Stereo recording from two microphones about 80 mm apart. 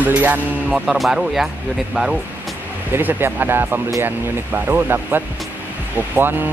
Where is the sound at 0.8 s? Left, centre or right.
Centre.